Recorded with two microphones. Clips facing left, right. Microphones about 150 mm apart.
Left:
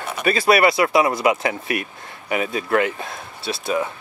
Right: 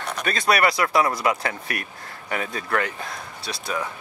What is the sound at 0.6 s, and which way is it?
Speech, 20° left (ahead or behind).